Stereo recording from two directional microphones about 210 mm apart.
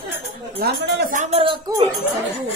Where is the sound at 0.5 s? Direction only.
50° right (ahead or behind).